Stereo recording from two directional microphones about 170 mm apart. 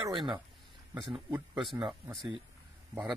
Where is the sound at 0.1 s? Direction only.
30° right (ahead or behind).